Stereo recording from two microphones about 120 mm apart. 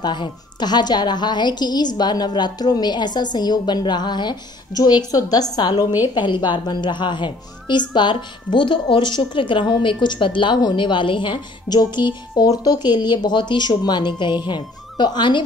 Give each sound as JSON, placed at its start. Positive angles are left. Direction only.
{"t": 0.0, "sound": "a woman's voice", "side_deg": 40}